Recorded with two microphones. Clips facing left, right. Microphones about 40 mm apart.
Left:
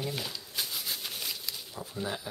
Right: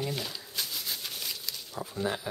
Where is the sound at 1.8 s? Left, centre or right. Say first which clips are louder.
Right 4 dB; centre.